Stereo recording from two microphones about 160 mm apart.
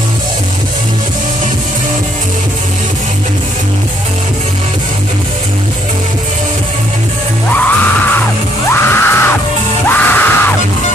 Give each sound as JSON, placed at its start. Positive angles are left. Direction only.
{"t": 7.5, "sound": "music", "side_deg": 10}